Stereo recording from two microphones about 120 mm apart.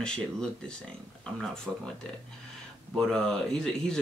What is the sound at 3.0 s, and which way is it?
Speech, 5° left (ahead or behind).